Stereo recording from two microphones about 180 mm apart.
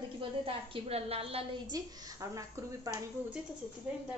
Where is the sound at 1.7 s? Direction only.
20° right (ahead or behind).